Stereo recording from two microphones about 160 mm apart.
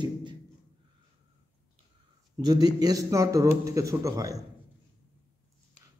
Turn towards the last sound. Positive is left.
turn(degrees=-20)  # may be behind; listen again after turning